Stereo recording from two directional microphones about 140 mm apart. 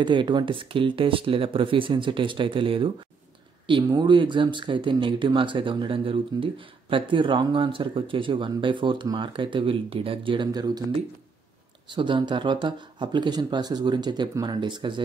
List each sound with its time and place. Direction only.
0.0 s speech: 35° right (ahead or behind)
11.9 s speech: 35° right (ahead or behind)